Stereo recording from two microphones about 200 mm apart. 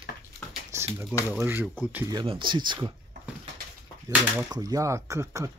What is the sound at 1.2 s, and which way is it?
Speech, 10° right (ahead or behind).